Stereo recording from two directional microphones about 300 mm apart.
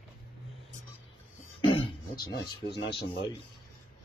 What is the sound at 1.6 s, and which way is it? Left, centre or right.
Throat clearing, centre.